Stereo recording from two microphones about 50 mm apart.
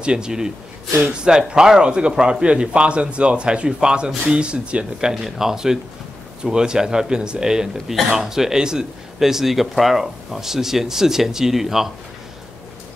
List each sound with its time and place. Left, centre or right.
0.0 s speech: centre
5.1 s speech: centre